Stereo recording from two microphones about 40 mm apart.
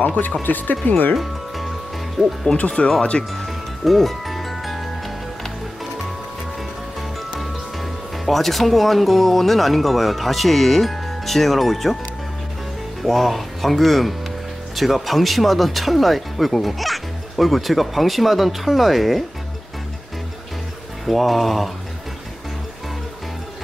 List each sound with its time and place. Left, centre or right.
0.0 s speech: left
1.1 s music: centre
2.2 s speech: centre
3.0 s speech: left
3.4 s music: centre
7.0 s speech: centre
13.0 s speech: centre
21.0 s speech: centre